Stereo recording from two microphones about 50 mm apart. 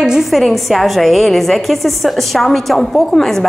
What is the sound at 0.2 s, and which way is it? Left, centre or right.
A woman's voice, centre.